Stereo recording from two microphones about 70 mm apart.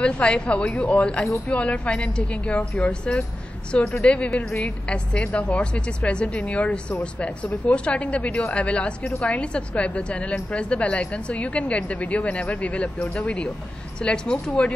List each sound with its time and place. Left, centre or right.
0.0 s a woman's voice: centre
4.6 s a woman's voice: centre